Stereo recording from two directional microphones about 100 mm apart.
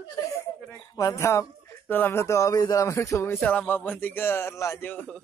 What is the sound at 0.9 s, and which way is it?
Speech, 35° left (ahead or behind).